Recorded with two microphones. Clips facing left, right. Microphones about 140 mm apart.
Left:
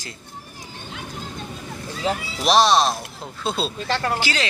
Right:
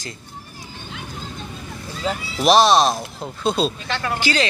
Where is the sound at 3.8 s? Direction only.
35° left (ahead or behind).